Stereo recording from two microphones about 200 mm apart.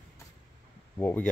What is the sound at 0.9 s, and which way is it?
Speech, 10° left (ahead or behind).